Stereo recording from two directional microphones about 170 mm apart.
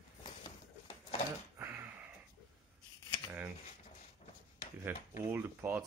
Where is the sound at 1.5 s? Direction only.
15° right (ahead or behind).